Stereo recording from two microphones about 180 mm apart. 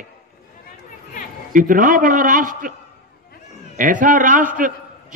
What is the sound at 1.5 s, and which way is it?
A man's voice, 50° right (ahead or behind).